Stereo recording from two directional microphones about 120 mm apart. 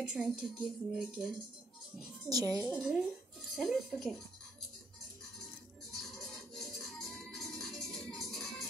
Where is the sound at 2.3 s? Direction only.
30° right (ahead or behind).